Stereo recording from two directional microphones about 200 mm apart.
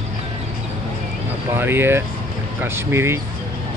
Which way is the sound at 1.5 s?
10° right (ahead or behind).